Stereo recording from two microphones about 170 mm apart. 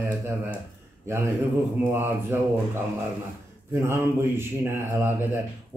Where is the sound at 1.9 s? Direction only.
15° right (ahead or behind).